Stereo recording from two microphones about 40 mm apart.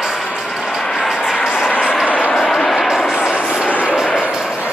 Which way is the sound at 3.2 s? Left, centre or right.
Right.